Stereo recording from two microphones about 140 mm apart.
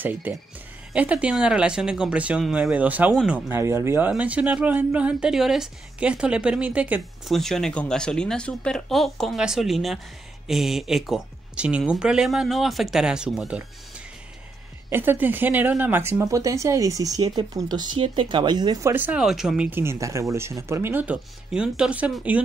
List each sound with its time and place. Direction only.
0.0 s speech: 15° right (ahead or behind)
7.3 s speech: 5° left (ahead or behind)
14.9 s speech: 15° right (ahead or behind)
19.8 s speech: 20° right (ahead or behind)